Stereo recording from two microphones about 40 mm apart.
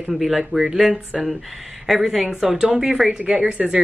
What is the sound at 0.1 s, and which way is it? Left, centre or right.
Speech, centre.